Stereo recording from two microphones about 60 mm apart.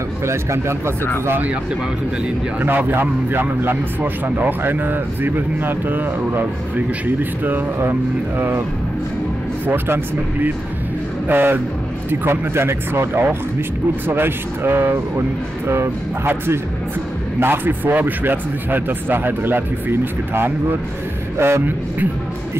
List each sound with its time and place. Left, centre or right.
0.3 s speech: right
2.6 s speech: right
11.2 s speech: right